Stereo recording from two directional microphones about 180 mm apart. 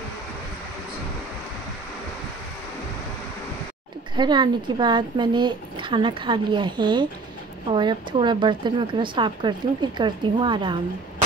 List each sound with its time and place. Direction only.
4.2 s speech: 25° right (ahead or behind)